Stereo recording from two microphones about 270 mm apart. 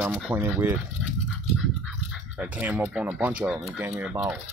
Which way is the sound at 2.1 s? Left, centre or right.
Centre.